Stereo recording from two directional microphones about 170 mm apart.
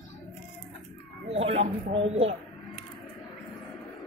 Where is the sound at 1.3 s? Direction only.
40° right (ahead or behind).